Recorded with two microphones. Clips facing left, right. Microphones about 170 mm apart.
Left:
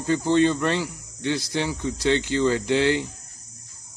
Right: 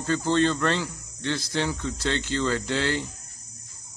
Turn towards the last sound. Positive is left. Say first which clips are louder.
# left 6 dB
turn(degrees=15)  # may be behind; listen again after turning